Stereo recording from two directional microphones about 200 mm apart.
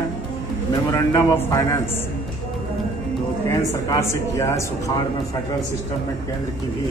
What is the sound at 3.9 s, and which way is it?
Speech, 15° left (ahead or behind).